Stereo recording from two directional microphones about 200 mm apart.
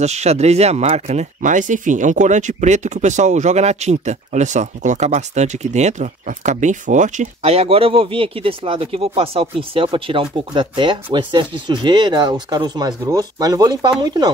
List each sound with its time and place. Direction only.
0.0 s speech: 35° right (ahead or behind)